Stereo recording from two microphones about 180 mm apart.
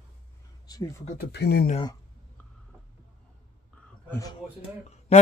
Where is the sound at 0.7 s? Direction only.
20° left (ahead or behind).